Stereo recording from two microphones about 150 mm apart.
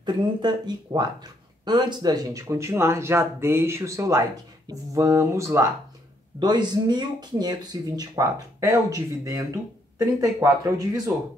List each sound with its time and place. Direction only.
0.0 s speech: 30° right (ahead or behind)